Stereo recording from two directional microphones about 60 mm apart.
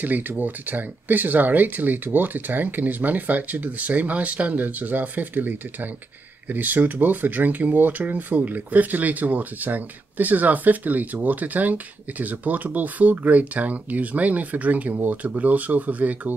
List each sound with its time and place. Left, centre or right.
0.0 s speech: right